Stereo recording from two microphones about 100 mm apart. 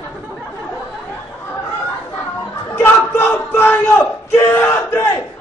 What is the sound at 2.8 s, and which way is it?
Battle cry, 20° left (ahead or behind).